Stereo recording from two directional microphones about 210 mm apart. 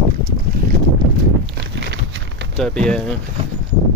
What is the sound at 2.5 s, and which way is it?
Speech, 5° left (ahead or behind).